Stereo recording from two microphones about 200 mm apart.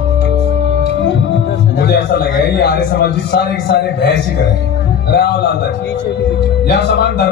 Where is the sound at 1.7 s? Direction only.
60° left (ahead or behind).